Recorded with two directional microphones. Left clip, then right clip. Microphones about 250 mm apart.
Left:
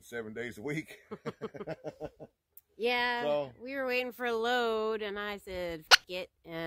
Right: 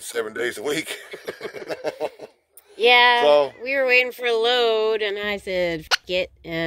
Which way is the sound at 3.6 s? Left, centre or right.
Centre.